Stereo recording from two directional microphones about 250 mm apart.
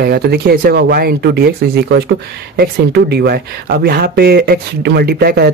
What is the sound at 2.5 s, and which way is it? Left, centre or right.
Speech, right.